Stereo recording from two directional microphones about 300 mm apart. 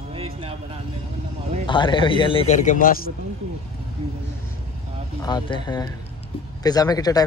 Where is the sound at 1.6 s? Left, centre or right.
Centre.